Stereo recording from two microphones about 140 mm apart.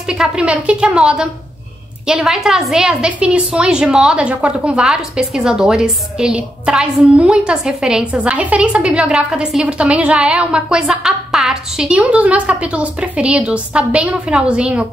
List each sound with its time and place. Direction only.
0.1 s a woman's voice: 5° right (ahead or behind)